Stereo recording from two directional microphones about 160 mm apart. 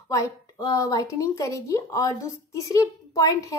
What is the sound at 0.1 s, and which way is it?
A woman's voice, 20° left (ahead or behind).